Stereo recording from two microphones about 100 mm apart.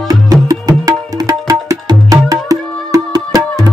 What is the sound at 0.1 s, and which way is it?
Music, 35° right (ahead or behind).